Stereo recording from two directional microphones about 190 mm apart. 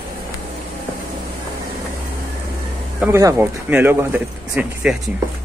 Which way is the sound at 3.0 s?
10° right (ahead or behind).